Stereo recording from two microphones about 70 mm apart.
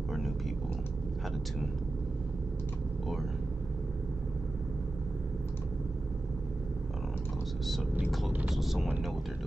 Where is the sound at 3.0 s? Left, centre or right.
Centre.